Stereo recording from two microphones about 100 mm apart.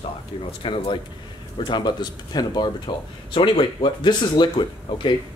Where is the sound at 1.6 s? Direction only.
45° left (ahead or behind).